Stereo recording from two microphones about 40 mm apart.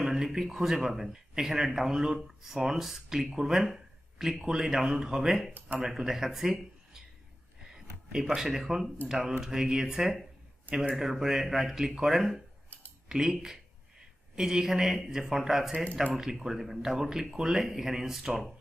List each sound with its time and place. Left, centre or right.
0.0 s speech: centre
7.6 s a sound: centre
8.4 s speech: centre